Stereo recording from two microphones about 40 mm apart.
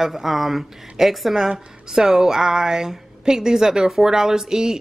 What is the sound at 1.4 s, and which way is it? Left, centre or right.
Speech, centre.